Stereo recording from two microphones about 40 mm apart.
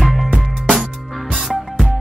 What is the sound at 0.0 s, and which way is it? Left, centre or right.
Music, centre.